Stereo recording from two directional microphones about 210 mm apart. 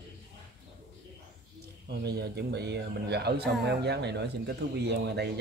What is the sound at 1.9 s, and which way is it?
A man's voice, 50° right (ahead or behind).